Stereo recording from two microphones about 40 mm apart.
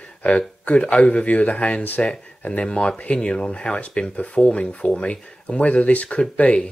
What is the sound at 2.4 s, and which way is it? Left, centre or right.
Speech, left.